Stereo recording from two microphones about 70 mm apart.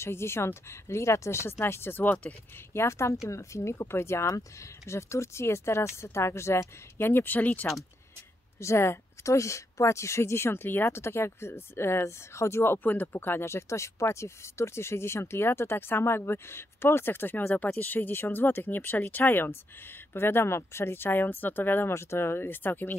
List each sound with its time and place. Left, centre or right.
0.0 s speech: left
8.5 s speech: left